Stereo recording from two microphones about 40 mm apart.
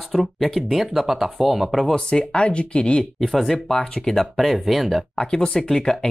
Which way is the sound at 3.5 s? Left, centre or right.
Centre.